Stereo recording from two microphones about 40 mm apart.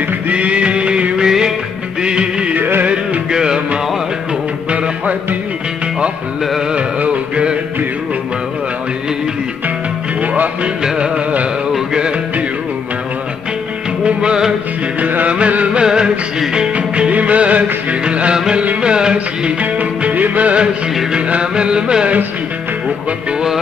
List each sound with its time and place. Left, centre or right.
0.3 s music: right
1.2 s music: centre
4.6 s music: right
7.0 s a sound: right
10.2 s music: right
10.8 s music: right
14.0 s music: right
15.0 s music: right
15.3 s a sound: right
15.8 s music: centre
16.7 s music: right
18.3 s music: centre
19.1 s music: right
21.3 s music: right